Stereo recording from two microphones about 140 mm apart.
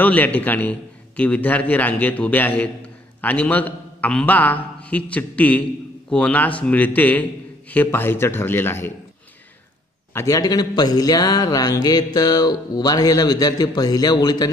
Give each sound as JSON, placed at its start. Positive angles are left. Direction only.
{"t": 0.0, "sound": "a man's voice", "side_deg": 10}
{"t": 10.1, "sound": "a man's voice", "side_deg": 25}